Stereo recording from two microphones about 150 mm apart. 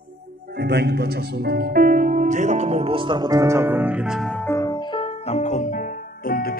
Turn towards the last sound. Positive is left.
turn(degrees=75)  # may be behind; listen again after turning